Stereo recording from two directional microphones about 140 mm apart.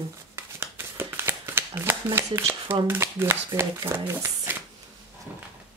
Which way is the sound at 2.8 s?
15° right (ahead or behind).